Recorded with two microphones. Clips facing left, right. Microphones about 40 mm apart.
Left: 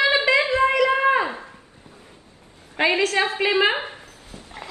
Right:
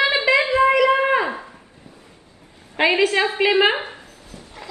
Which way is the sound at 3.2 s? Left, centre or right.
Right.